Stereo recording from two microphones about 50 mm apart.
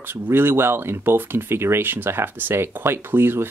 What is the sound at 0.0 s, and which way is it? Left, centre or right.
Speech, right.